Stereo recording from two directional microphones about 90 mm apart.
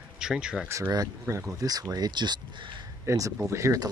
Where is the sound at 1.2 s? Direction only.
30° right (ahead or behind).